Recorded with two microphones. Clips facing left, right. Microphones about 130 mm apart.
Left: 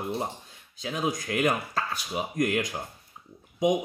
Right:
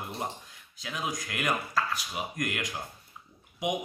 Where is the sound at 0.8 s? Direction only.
35° left (ahead or behind).